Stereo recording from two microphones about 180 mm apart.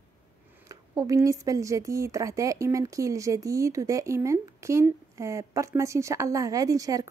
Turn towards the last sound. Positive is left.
turn(degrees=-20)  # may be behind; listen again after turning